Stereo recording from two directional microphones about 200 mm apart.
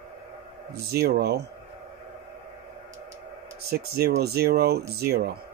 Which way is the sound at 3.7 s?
50° right (ahead or behind).